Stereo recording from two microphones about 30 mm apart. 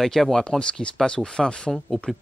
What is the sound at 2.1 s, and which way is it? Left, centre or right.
Speech, centre.